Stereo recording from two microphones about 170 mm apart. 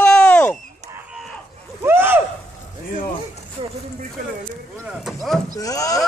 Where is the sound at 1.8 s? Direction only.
15° right (ahead or behind).